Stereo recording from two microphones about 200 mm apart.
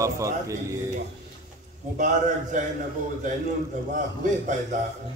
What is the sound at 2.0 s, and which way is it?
Speech, 40° right (ahead or behind).